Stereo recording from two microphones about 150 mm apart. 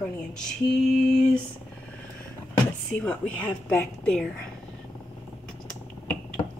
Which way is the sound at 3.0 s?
10° left (ahead or behind).